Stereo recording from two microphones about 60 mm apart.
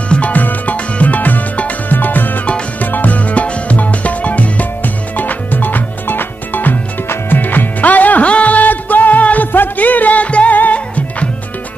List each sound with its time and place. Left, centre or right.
0.1 s music: left